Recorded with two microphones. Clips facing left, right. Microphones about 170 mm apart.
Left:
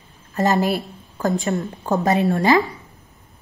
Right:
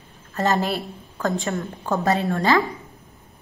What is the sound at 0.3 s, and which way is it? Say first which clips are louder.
A woman's voice: left 3 dB; 15° left (ahead or behind).